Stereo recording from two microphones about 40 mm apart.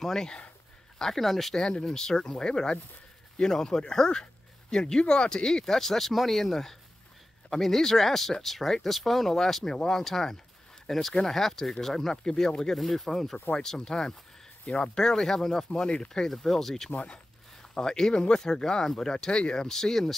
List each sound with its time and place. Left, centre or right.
0.0 s speech: centre
1.6 s speech: left
12.7 s speech: centre
16.3 s speech: centre
18.1 s speech: left
18.4 s speech: centre